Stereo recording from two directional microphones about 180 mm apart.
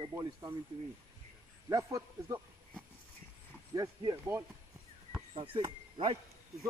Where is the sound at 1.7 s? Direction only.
20° right (ahead or behind).